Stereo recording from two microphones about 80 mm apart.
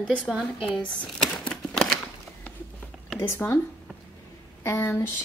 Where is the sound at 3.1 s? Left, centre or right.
Left.